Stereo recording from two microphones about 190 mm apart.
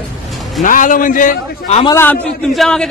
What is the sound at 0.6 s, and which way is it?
A man's voice, 45° left (ahead or behind).